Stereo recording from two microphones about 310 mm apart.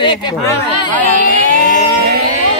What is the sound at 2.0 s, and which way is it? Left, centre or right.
Music, right.